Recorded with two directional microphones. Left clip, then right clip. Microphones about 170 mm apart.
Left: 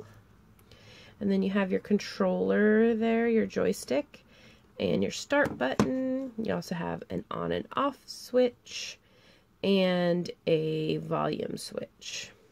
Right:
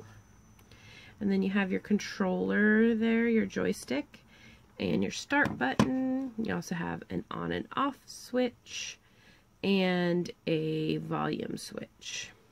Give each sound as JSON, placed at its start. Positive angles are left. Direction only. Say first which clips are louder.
{"t": 0.8, "sound": "speech", "louder": "left 2 dB", "side_deg": 15}